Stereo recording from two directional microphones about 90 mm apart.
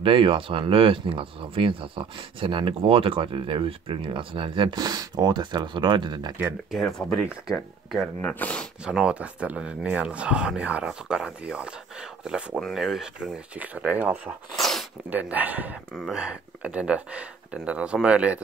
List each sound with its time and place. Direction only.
0.0 s speech: 75° right (ahead or behind)
4.7 s speech: 45° right (ahead or behind)
6.7 s speech: 5° left (ahead or behind)
8.2 s speech: 15° left (ahead or behind)
8.8 s speech: 10° right (ahead or behind)
14.5 s sneeze: 5° left (ahead or behind)
15.0 s speech: 20° right (ahead or behind)